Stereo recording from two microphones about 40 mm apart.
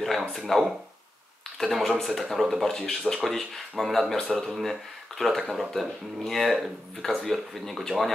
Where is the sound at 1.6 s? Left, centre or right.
Centre.